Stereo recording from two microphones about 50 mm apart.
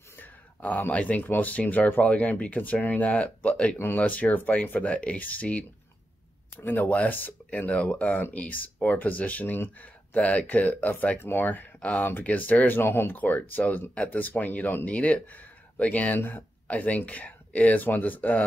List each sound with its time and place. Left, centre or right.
0.2 s speech: left
3.7 s speech: left
12.8 s speech: left